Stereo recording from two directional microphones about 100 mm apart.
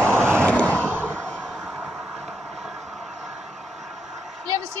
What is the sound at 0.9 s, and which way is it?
Slam, 25° right (ahead or behind).